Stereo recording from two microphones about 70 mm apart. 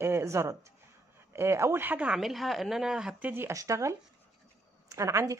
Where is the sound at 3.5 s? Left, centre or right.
Right.